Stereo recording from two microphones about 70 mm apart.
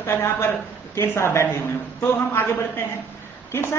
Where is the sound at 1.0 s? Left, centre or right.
Left.